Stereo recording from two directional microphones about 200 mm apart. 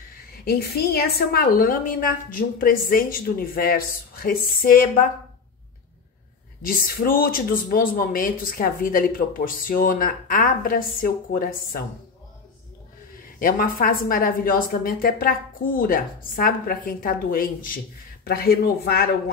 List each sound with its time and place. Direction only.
0.5 s a woman's voice: 50° left (ahead or behind)
6.6 s a woman's voice: 45° left (ahead or behind)
13.4 s a woman's voice: 45° left (ahead or behind)